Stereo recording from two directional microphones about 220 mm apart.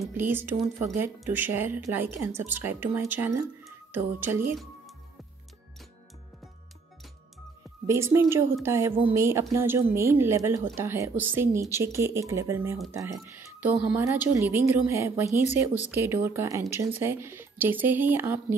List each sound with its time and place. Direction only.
0.0 s speech: 10° right (ahead or behind)
7.8 s speech: 15° right (ahead or behind)